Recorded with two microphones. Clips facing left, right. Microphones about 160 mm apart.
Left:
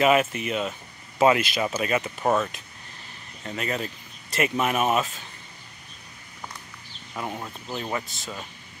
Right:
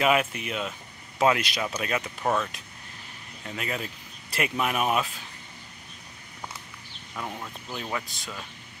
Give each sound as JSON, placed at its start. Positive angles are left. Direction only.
{"t": 0.0, "sound": "speech", "side_deg": 0}
{"t": 7.2, "sound": "speech", "side_deg": 15}
{"t": 7.9, "sound": "speech", "side_deg": 0}